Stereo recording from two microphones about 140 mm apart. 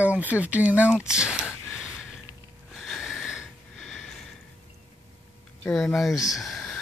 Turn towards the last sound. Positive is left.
turn(degrees=5)  # may be behind; listen again after turning